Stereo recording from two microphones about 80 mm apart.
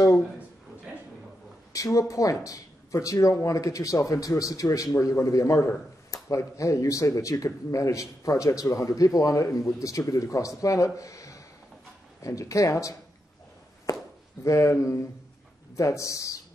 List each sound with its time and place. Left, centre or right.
1.7 s speech: left
13.9 s a sound: left
14.4 s speech: left